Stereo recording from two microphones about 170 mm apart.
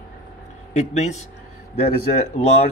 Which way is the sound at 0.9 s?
45° left (ahead or behind).